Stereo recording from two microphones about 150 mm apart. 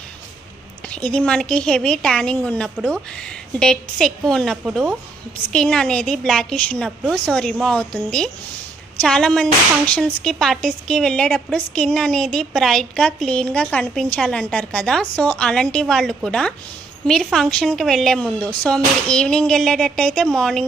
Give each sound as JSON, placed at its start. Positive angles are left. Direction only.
{"t": 0.8, "sound": "speech", "side_deg": 5}